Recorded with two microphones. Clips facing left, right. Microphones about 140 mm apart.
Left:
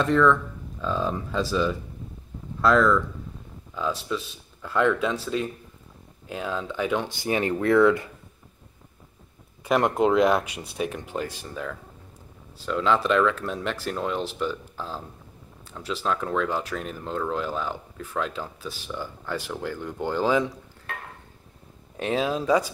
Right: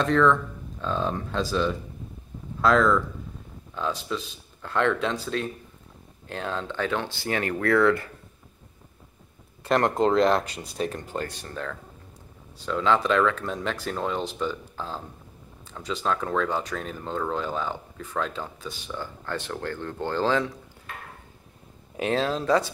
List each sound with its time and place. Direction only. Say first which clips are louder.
0.0 s speech: left 1 dB; centre (ahead or behind)
9.7 s speech: left 1 dB; 5° left (ahead or behind)
21.9 s speech: right 1 dB; centre (ahead or behind)
22.2 s speech: left 2 dB; 10° left (ahead or behind)